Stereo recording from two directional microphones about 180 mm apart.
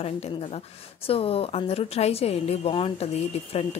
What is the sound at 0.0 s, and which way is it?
Speech, 35° left (ahead or behind).